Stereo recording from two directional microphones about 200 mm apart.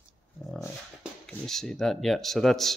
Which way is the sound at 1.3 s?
Centre (ahead or behind).